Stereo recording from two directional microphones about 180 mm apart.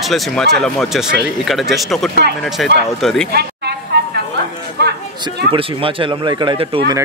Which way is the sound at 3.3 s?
65° right (ahead or behind).